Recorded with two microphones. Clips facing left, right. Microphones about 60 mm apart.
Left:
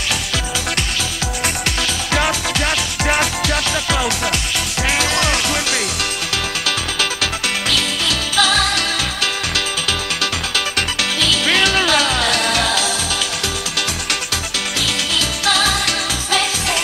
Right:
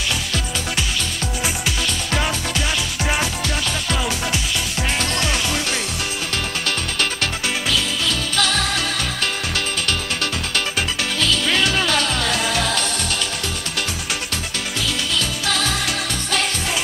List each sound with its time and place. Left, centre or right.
4.9 s music: left
5.2 s music: centre
7.7 s music: centre
11.1 s music: centre
11.5 s music: left
11.8 s music: centre
15.1 s music: centre